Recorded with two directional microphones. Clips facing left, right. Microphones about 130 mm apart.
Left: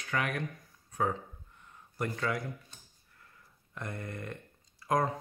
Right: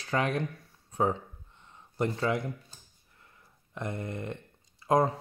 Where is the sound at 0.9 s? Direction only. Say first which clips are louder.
Right 4 dB; 25° right (ahead or behind).